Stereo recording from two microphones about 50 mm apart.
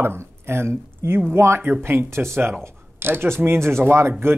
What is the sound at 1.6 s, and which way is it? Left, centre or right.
Speech, right.